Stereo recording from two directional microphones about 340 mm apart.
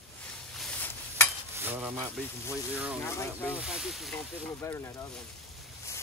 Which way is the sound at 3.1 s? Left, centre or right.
Centre.